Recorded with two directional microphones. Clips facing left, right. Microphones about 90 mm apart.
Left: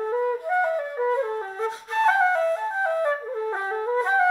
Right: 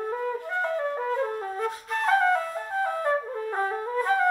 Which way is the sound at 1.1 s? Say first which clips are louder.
Left 2 dB; 25° left (ahead or behind).